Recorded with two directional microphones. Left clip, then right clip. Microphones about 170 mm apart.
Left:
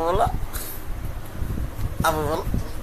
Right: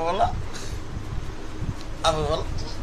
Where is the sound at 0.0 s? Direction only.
30° left (ahead or behind).